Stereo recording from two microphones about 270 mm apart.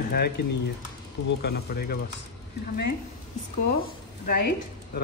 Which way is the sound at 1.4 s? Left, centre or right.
Left.